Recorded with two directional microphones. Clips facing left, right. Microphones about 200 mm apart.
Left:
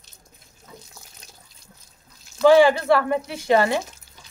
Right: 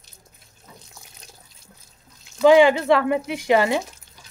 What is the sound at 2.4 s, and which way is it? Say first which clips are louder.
Speech: right 1 dB; 15° right (ahead or behind).